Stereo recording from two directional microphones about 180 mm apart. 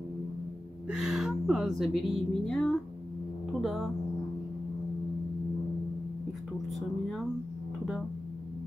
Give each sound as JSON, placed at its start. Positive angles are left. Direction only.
{"t": 0.8, "sound": "a woman's voice", "side_deg": -5}
{"t": 6.7, "sound": "speech", "side_deg": 0}